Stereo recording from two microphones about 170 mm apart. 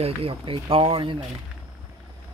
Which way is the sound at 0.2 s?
35° right (ahead or behind).